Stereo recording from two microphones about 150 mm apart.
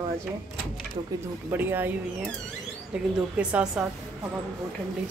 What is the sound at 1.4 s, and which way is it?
Speech, 15° right (ahead or behind).